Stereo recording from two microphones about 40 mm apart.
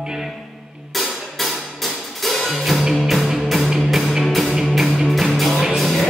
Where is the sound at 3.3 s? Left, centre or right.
Centre.